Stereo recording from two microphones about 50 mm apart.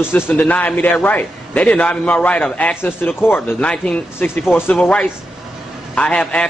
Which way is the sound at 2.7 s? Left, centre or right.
Left.